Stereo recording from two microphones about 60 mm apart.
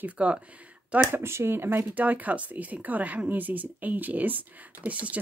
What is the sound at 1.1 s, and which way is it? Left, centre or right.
Speech, right.